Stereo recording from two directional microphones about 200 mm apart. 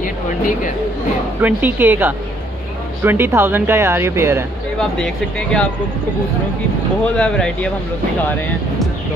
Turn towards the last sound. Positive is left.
turn(degrees=5)  # may be behind; listen again after turning